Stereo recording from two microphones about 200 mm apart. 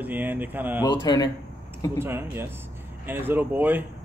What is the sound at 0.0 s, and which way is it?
Speech, 10° right (ahead or behind).